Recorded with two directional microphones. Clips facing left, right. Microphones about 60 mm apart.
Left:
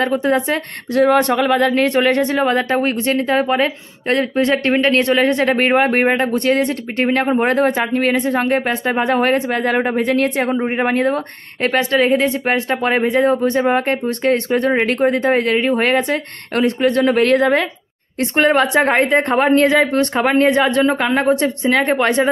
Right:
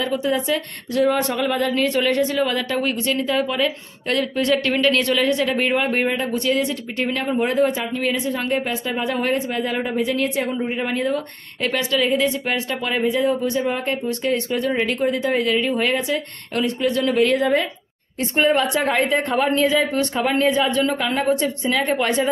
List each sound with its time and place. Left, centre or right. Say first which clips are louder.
0.0 s speech: left 5 dB; left
1.7 s speech: left 5 dB; left
18.6 s speech: left 5 dB; left